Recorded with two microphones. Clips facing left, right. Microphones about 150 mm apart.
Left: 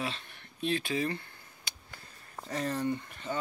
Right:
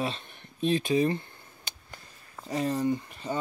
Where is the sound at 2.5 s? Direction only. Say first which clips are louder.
Right 4 dB; 10° right (ahead or behind).